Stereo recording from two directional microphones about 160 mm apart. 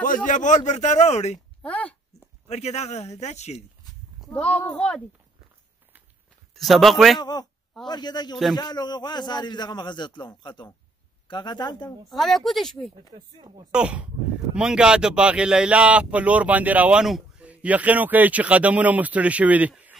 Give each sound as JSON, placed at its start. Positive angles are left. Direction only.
{"t": 0.0, "sound": "speech", "side_deg": 55}
{"t": 1.6, "sound": "a sound", "side_deg": 10}
{"t": 2.4, "sound": "speech", "side_deg": 40}
{"t": 4.3, "sound": "speech", "side_deg": 10}
{"t": 6.5, "sound": "speech", "side_deg": 0}
{"t": 7.2, "sound": "a man's voice", "side_deg": 25}
{"t": 12.1, "sound": "speech", "side_deg": 0}
{"t": 13.1, "sound": "speech", "side_deg": -30}
{"t": 13.7, "sound": "speech", "side_deg": -5}